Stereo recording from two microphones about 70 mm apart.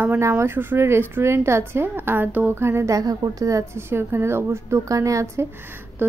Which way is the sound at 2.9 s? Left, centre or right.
Right.